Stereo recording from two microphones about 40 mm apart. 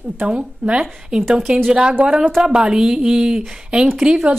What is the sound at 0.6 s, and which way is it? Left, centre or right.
A woman's voice, right.